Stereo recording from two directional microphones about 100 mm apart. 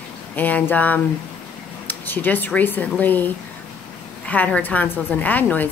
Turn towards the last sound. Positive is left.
turn(degrees=15)  # may be behind; listen again after turning